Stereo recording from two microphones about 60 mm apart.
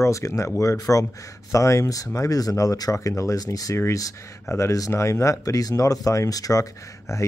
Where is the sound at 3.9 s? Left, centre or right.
Left.